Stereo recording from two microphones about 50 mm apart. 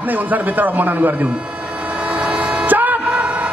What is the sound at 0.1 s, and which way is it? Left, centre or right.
A man's voice, right.